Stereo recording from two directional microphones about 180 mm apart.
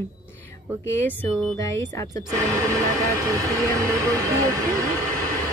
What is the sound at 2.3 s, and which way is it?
Music, 15° right (ahead or behind).